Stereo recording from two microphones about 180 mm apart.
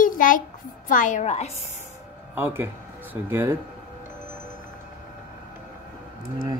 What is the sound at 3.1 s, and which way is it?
Speech, 10° right (ahead or behind).